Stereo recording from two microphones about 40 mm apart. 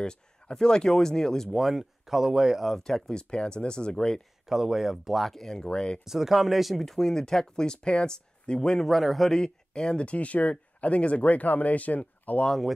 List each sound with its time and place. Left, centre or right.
0.0 s speech: left
1.6 s speech: centre
2.8 s speech: centre
4.5 s speech: centre
5.5 s speech: centre
6.0 s speech: centre
6.8 s speech: centre
8.7 s speech: centre
9.3 s speech: centre
10.0 s speech: left